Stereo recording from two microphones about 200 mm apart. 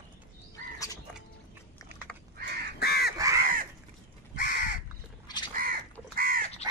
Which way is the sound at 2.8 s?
50° left (ahead or behind).